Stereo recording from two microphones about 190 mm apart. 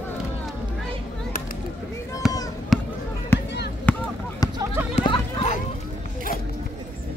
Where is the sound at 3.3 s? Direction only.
10° left (ahead or behind).